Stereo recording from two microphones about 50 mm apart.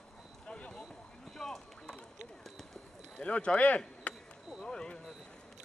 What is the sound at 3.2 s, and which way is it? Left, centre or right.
Speech, left.